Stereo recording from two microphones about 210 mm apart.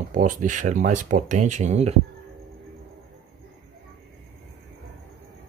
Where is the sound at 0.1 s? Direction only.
40° right (ahead or behind).